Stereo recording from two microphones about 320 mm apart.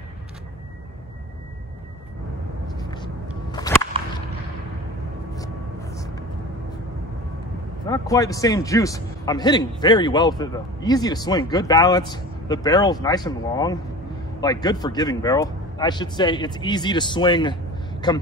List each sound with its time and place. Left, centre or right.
3.5 s a sound: centre
5.3 s vehicle: centre
7.8 s a man's voice: centre